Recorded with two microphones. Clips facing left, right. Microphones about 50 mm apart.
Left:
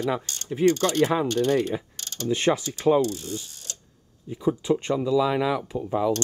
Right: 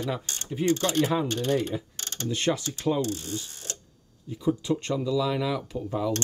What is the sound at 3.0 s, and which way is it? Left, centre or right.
Ratchet, right.